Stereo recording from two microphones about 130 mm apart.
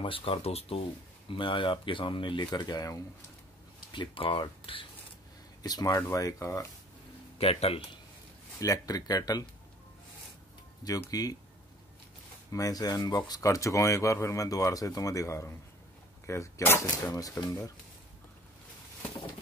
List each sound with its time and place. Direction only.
0.0 s speech: 45° left (ahead or behind)
3.9 s speech: 40° left (ahead or behind)
5.6 s speech: 30° left (ahead or behind)
7.3 s speech: 50° left (ahead or behind)
8.5 s speech: 30° left (ahead or behind)
11.1 s speech: 30° left (ahead or behind)
12.5 s speech: 30° left (ahead or behind)